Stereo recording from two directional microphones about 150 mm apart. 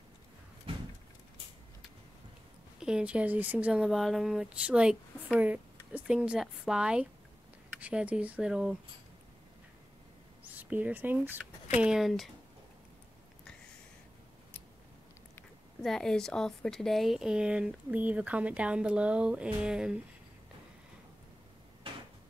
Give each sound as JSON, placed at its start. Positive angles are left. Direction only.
{"t": 0.7, "sound": "vehicle", "side_deg": -35}
{"t": 2.8, "sound": "speech", "side_deg": -5}
{"t": 10.5, "sound": "speech", "side_deg": -10}
{"t": 15.8, "sound": "speech", "side_deg": 5}